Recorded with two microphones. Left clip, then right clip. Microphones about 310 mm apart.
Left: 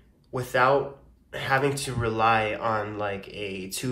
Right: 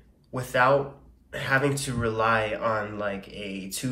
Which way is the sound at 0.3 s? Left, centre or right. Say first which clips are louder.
Even; centre.